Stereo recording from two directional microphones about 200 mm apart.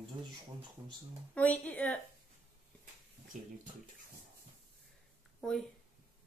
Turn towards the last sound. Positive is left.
turn(degrees=0)  # may be behind; listen again after turning